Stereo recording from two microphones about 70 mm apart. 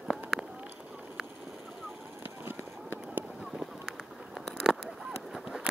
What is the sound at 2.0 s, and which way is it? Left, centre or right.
Vehicle, right.